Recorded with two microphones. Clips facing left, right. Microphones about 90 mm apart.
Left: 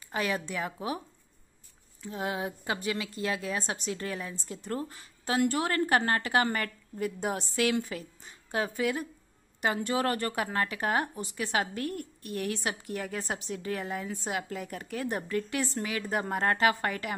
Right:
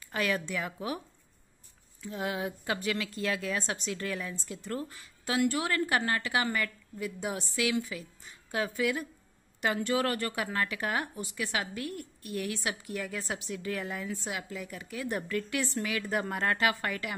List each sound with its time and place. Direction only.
0.1 s a woman's voice: 25° left (ahead or behind)
2.0 s a woman's voice: 30° left (ahead or behind)
8.3 s speech: 30° left (ahead or behind)
14.5 s a woman's voice: 45° left (ahead or behind)
15.0 s speech: 30° left (ahead or behind)